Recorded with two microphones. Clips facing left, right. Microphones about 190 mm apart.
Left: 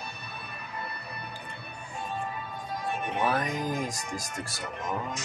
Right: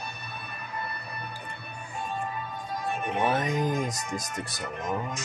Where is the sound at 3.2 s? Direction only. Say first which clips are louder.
Right 3 dB; 25° right (ahead or behind).